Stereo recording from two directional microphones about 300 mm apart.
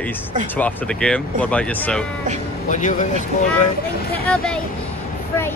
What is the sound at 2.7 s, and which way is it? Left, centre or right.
Speech, left.